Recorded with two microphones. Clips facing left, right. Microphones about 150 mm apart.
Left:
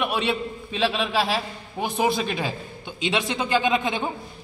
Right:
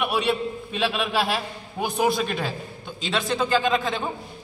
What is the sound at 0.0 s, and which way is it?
A man's voice, 5° right (ahead or behind).